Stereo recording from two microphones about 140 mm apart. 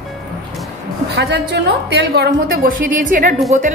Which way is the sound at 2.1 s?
90° right.